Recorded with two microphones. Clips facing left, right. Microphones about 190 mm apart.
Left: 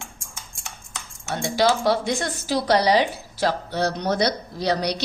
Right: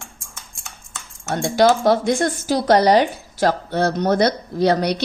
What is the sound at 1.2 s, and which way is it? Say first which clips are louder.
Speech: right 5 dB; 50° right (ahead or behind).